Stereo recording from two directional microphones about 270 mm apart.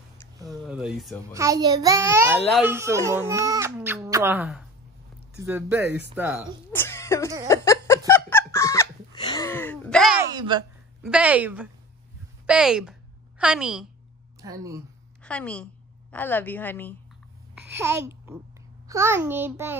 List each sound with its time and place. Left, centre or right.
0.5 s a child's voice: centre
6.7 s a sound: centre
10.3 s a sound: centre
11.0 s a woman's voice: centre
15.2 s a woman's voice: centre
17.6 s a child's voice: centre